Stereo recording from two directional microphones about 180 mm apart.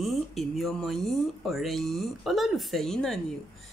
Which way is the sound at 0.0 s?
Centre (ahead or behind).